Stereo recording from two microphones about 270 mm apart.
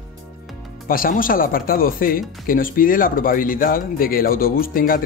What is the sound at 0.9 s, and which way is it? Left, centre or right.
Speech, left.